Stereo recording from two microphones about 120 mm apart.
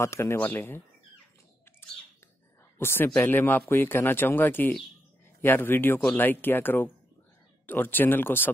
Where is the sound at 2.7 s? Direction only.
20° left (ahead or behind).